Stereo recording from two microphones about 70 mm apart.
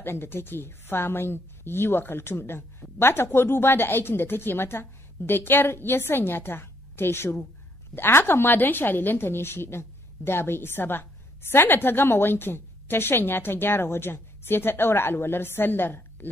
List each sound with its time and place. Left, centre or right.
0.0 s a woman's voice: left